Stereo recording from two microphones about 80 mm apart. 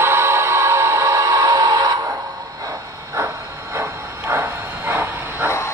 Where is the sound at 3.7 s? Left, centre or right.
Right.